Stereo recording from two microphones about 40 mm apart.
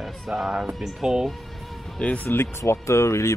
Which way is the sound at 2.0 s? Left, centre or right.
Left.